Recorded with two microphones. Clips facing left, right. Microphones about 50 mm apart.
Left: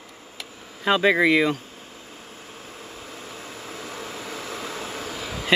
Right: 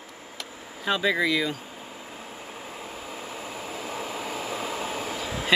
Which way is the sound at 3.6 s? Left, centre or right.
Centre.